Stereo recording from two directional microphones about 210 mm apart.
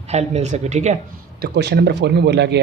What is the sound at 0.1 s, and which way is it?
Speech, 30° right (ahead or behind).